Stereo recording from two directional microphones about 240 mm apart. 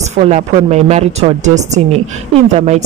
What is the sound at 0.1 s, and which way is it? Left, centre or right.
A woman's voice, right.